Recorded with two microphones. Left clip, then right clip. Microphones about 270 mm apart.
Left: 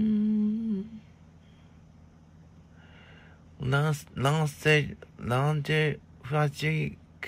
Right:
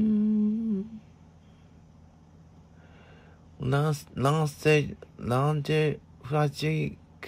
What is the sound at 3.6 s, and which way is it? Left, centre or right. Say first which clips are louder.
Speech: even; right.